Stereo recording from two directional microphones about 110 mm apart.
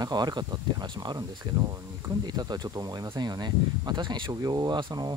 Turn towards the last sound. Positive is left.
turn(degrees=-40)  # may be behind; listen again after turning